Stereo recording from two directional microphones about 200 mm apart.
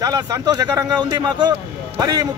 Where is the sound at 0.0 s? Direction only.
15° right (ahead or behind).